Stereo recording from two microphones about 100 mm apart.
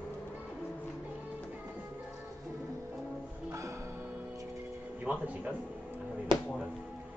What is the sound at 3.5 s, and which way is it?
Music, 30° right (ahead or behind).